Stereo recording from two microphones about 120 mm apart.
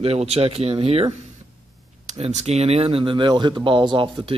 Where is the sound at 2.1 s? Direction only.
70° right (ahead or behind); by 4.3 s 45° right (ahead or behind).